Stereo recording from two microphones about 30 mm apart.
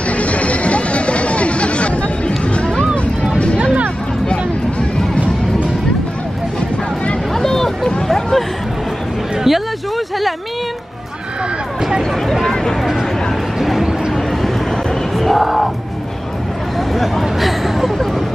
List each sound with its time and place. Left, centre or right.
0.1 s music: left
7.3 s vehicle: centre
8.1 s hubbub: centre
9.5 s a sound: centre
12.0 s a sound: centre
15.1 s music: centre
16.7 s hubbub: centre